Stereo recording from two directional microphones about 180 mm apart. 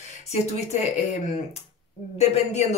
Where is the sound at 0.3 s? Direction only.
40° left (ahead or behind).